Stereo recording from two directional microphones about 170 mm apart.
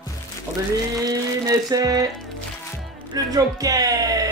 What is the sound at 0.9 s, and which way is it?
Music, 20° right (ahead or behind).